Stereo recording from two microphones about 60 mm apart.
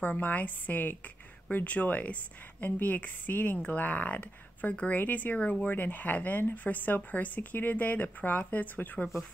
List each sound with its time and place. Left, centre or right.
0.0 s speech: left